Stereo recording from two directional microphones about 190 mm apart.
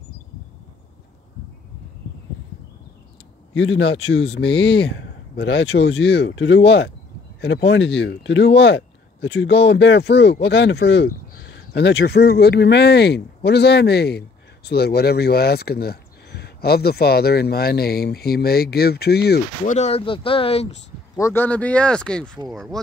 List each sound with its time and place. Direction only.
3.5 s speech: 85° left; by 19.4 s 60° left (ahead or behind)
19.6 s speech: 35° left (ahead or behind)
21.2 s speech: 10° left (ahead or behind)